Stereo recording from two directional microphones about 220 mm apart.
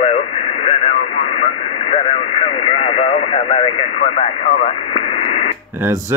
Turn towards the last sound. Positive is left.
turn(degrees=30)  # may be behind; listen again after turning